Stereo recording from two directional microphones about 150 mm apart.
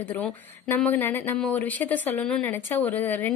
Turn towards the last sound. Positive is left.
turn(degrees=10)  # may be behind; listen again after turning